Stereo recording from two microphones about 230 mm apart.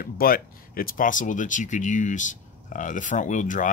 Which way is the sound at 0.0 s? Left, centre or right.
Left.